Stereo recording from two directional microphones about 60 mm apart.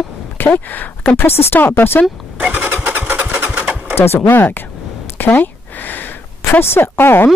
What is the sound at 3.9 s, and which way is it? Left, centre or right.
Speech, left.